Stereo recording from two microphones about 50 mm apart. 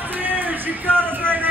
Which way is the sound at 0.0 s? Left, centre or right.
Right.